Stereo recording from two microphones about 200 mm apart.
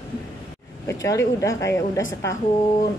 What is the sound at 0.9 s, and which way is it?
Speech, 15° left (ahead or behind).